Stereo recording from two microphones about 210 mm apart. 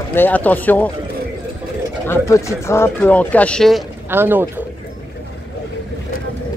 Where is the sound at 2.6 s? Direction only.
10° left (ahead or behind).